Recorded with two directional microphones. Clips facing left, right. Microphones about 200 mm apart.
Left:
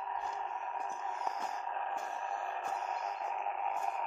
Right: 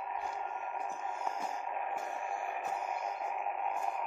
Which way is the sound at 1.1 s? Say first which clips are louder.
Right 1 dB; 30° right (ahead or behind).